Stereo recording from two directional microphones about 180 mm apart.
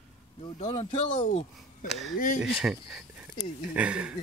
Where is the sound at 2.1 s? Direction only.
50° left (ahead or behind).